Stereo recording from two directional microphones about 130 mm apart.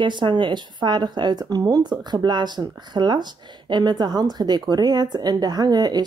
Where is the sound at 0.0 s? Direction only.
35° right (ahead or behind).